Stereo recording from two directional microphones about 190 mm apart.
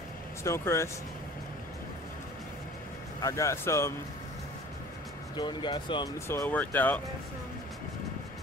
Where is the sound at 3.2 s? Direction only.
15° left (ahead or behind).